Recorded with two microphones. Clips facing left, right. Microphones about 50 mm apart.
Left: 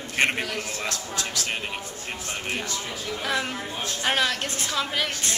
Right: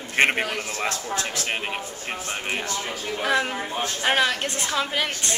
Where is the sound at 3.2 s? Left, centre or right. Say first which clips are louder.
Right 5 dB; centre.